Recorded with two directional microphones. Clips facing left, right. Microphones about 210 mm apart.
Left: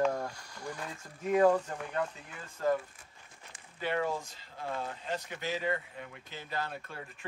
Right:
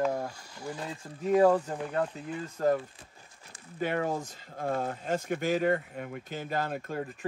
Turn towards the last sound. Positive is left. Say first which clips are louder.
# right 7 dB
turn(degrees=-45)  # may be behind; listen again after turning